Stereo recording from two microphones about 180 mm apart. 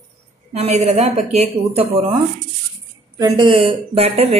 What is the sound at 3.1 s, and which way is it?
Speech, 25° right (ahead or behind).